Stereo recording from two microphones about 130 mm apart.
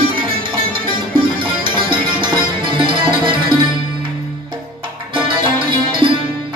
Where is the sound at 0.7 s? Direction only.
40° right (ahead or behind).